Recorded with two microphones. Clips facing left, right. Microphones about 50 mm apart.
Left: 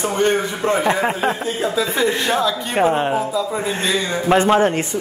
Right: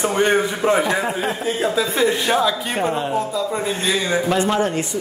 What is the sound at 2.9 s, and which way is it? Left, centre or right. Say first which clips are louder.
Speech: left 3 dB; left.